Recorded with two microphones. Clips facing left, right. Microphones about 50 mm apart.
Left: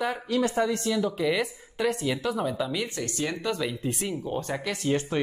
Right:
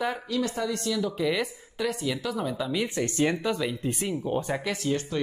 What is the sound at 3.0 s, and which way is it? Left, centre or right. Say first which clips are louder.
Speech: right 5 dB; right.